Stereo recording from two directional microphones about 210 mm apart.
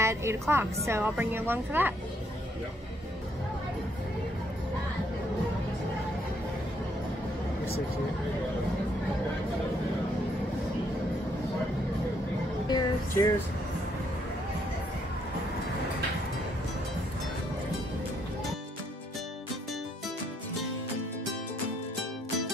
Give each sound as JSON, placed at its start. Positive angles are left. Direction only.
{"t": 0.0, "sound": "a woman's voice", "side_deg": -15}
{"t": 12.6, "sound": "music", "side_deg": 15}